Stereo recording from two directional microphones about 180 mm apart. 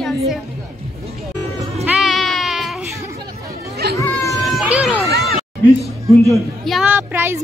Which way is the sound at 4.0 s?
15° left (ahead or behind).